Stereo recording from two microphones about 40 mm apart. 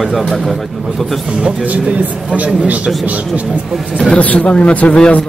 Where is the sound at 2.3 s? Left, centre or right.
Right.